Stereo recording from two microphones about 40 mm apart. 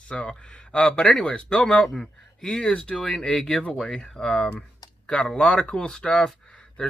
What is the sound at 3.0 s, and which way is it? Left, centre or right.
Speech, centre.